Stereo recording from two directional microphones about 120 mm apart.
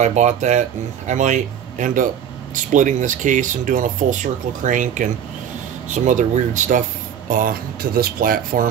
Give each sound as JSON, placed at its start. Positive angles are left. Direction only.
{"t": 0.0, "sound": "speech", "side_deg": -75}
{"t": 8.5, "sound": "speech", "side_deg": -90}